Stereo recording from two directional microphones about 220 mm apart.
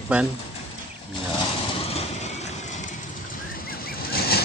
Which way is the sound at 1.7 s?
25° left (ahead or behind).